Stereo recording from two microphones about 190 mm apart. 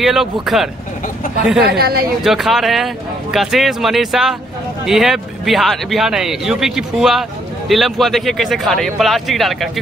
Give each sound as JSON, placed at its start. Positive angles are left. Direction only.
{"t": 0.0, "sound": "a man's voice", "side_deg": 0}
{"t": 1.7, "sound": "speech", "side_deg": -55}
{"t": 2.2, "sound": "a man's voice", "side_deg": 0}